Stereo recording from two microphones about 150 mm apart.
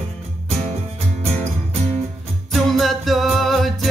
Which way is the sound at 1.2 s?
45° right (ahead or behind).